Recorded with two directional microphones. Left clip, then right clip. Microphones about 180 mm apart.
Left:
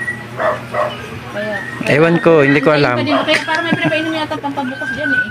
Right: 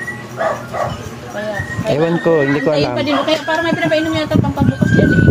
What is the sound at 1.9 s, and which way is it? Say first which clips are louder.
Speech: left 4 dB; 10° left (ahead or behind).